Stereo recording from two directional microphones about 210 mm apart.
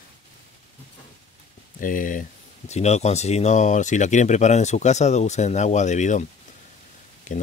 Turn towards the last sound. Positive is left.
turn(degrees=35)  # may be behind; listen again after turning